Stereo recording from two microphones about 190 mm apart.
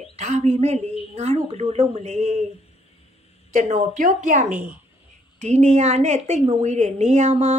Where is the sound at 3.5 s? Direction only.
40° right (ahead or behind).